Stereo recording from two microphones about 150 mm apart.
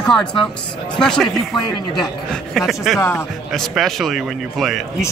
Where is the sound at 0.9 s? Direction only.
5° left (ahead or behind).